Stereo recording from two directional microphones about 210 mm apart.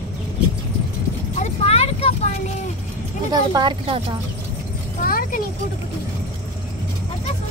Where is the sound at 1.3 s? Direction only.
30° left (ahead or behind).